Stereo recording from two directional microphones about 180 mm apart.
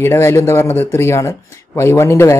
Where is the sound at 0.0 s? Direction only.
15° left (ahead or behind).